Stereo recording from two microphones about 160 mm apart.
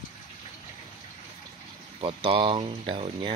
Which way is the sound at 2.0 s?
30° right (ahead or behind).